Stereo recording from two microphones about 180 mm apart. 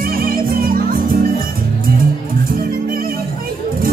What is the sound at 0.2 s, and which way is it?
Music, 55° right (ahead or behind).